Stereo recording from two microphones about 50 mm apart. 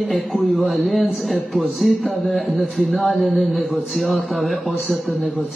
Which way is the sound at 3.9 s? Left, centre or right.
Centre.